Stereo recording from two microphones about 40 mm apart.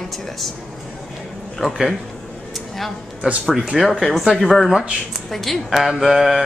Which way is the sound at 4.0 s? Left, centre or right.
Centre.